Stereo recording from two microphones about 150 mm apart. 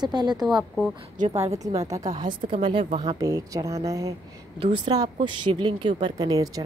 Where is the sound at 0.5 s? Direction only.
5° right (ahead or behind).